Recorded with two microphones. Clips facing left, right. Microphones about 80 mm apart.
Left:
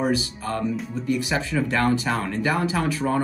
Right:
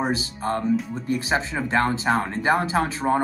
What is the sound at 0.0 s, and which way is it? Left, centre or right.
Speech, right.